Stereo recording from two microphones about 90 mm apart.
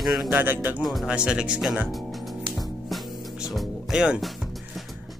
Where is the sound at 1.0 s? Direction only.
10° right (ahead or behind).